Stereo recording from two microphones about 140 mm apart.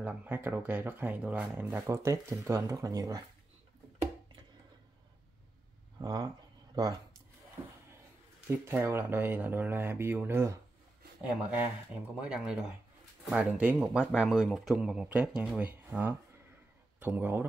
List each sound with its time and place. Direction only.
0.0 s speech: 15° right (ahead or behind)
5.9 s speech: 25° right (ahead or behind)
8.5 s speech: 15° right (ahead or behind)
12.2 s speech: 5° right (ahead or behind)